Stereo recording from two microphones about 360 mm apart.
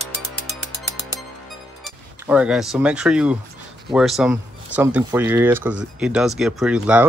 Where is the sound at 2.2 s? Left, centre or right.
Centre.